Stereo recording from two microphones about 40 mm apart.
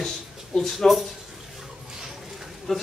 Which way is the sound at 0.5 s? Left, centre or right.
Centre.